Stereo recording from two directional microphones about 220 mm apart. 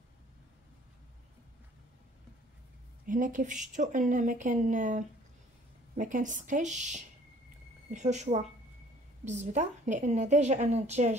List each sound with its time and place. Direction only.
3.1 s a woman's voice: 35° right (ahead or behind)